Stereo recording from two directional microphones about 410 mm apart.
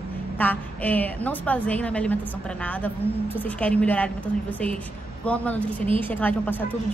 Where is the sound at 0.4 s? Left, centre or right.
Centre.